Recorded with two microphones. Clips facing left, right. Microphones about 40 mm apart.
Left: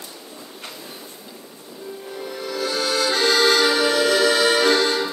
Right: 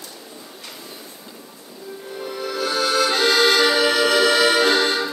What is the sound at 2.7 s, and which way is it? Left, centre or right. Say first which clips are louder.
Accordion: right 2 dB; centre.